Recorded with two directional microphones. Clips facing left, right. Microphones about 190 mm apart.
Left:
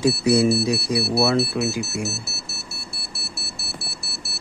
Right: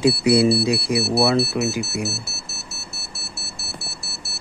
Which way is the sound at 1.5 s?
5° right (ahead or behind).